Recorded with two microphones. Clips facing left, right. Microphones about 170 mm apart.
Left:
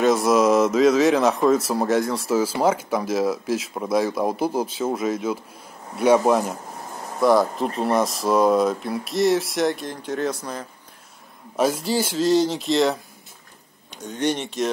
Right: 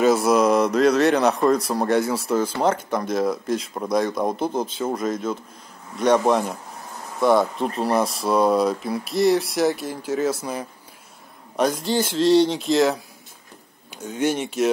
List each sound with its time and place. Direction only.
0.0 s speech: centre (ahead or behind)
11.5 s speech: 5° left (ahead or behind)